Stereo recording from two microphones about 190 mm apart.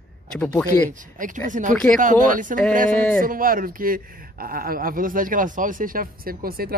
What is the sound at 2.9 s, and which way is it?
Speech, 5° left (ahead or behind).